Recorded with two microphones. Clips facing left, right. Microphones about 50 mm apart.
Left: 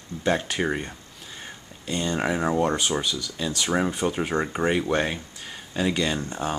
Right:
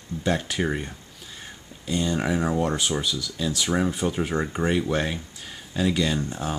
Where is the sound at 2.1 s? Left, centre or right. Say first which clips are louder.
Left 3 dB; centre.